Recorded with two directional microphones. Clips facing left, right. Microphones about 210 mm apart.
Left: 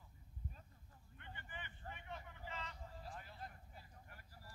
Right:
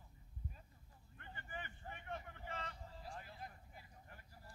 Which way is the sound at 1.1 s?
45° right (ahead or behind).